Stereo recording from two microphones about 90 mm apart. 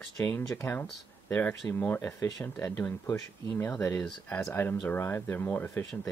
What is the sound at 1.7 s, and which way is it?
Speech, 25° left (ahead or behind).